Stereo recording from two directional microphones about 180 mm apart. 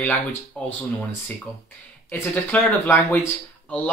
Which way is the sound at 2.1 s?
10° left (ahead or behind).